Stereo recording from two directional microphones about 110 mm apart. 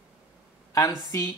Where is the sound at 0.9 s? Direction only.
35° left (ahead or behind).